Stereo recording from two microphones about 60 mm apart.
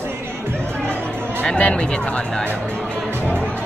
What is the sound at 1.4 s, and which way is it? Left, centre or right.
Speech, centre.